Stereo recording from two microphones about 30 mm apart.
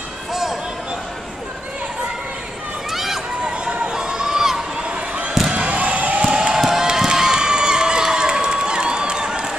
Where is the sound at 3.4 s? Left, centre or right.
Right.